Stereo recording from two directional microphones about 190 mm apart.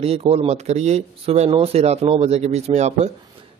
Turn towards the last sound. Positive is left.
turn(degrees=-35)  # may be behind; listen again after turning